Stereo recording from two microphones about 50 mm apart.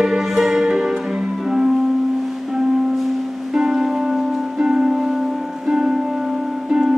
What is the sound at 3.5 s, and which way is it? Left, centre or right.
Music, centre.